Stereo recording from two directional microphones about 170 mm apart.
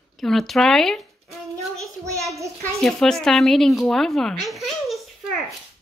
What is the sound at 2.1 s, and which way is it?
Child singing, 20° right (ahead or behind).